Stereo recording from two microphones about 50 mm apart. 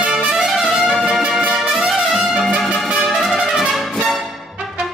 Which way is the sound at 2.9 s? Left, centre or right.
Right.